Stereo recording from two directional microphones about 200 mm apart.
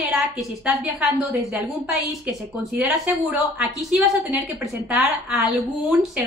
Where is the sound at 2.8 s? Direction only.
5° right (ahead or behind).